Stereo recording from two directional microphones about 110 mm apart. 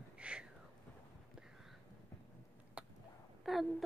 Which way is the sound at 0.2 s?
10° right (ahead or behind).